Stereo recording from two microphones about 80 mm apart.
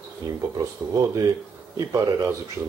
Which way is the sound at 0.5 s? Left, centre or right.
Right.